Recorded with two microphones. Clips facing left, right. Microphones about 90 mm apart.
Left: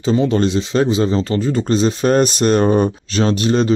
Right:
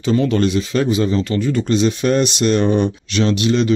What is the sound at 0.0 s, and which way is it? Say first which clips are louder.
Speech: left 1 dB; 30° left (ahead or behind).